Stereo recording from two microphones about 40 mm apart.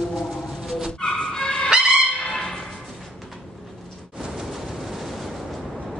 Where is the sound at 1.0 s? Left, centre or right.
Centre.